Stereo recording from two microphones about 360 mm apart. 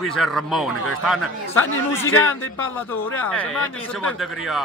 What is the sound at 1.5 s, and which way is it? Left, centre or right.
Speech, left.